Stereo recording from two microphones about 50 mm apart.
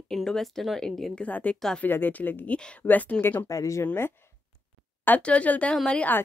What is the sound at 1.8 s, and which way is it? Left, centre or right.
Speech, left.